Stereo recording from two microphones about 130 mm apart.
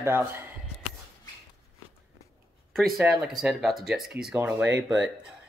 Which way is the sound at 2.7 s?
Centre (ahead or behind).